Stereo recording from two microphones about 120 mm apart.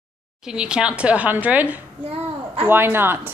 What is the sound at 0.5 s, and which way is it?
A woman's voice, 5° right (ahead or behind).